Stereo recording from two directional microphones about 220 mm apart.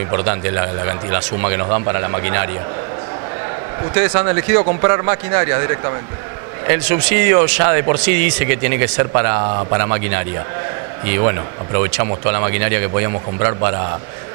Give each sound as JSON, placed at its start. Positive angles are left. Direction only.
{"t": 0.1, "sound": "speech", "side_deg": -20}
{"t": 3.9, "sound": "speech", "side_deg": -15}